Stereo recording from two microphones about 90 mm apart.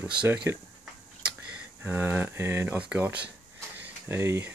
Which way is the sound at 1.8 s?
20° right (ahead or behind).